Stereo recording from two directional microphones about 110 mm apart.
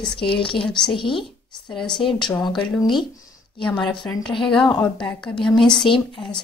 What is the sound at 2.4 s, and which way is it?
Speech, 45° left (ahead or behind).